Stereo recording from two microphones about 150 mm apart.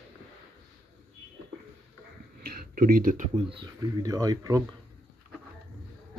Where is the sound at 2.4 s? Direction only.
90° right; by 3.3 s 65° right (ahead or behind).